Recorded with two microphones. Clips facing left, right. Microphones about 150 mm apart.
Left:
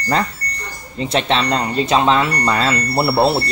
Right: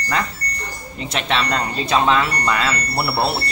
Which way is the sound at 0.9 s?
30° left (ahead or behind).